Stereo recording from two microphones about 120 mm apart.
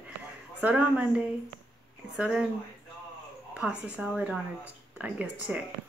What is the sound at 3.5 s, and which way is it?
Speech, 10° right (ahead or behind).